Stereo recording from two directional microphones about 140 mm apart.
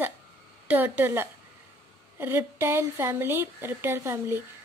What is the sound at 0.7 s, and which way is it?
A woman's voice, 10° right (ahead or behind).